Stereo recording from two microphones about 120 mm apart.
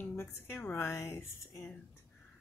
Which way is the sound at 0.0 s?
20° left (ahead or behind).